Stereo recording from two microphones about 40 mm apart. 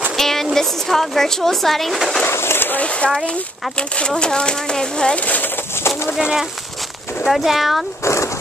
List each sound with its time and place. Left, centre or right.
0.2 s a sound: centre
0.6 s speech: centre
2.2 s a sound: left
4.2 s speech: left
5.1 s speech: left
7.2 s speech: centre